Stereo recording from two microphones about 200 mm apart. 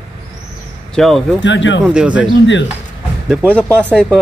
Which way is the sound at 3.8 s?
5° left (ahead or behind).